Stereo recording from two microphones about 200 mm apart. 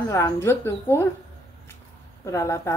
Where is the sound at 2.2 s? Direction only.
15° left (ahead or behind).